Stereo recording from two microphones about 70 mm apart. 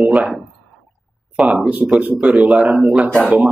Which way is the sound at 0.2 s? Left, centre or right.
Centre.